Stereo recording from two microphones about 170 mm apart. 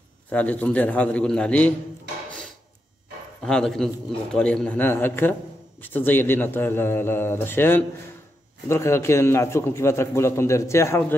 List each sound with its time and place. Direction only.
0.3 s a man's voice: 10° left (ahead or behind)
3.4 s a man's voice: 5° left (ahead or behind)